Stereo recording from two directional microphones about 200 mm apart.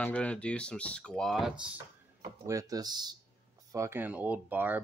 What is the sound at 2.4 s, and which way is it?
Speech, 15° right (ahead or behind).